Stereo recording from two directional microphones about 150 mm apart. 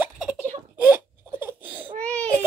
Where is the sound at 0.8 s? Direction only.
15° right (ahead or behind).